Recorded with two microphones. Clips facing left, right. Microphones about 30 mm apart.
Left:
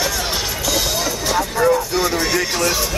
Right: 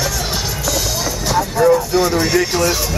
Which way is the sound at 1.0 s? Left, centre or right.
Centre.